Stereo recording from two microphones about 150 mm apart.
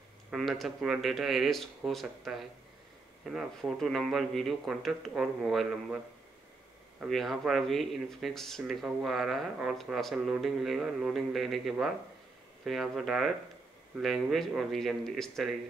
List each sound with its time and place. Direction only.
0.3 s speech: centre (ahead or behind)
7.0 s speech: centre (ahead or behind)